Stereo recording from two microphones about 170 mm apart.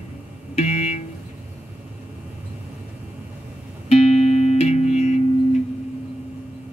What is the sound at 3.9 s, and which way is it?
Music, 40° left (ahead or behind).